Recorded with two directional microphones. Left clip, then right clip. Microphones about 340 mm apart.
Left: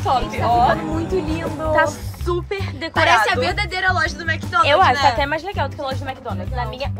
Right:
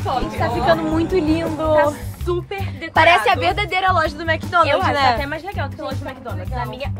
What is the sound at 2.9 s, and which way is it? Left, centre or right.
Speech, right.